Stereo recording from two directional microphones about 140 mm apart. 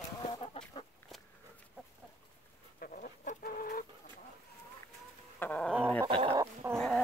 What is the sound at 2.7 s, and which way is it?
Chicken, 80° left.